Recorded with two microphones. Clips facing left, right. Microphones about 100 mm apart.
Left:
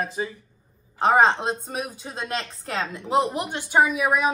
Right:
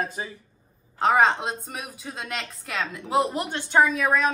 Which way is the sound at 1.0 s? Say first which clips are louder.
Left 2 dB; 30° left (ahead or behind).